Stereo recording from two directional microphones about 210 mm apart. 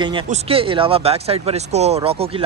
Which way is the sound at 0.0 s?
25° right (ahead or behind).